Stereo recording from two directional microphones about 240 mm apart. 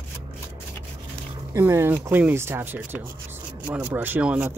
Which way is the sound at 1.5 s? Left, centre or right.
Centre.